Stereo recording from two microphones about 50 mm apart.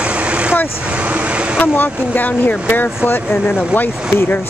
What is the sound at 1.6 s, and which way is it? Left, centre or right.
Speech, left.